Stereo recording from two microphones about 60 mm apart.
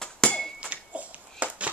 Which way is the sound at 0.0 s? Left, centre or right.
Centre.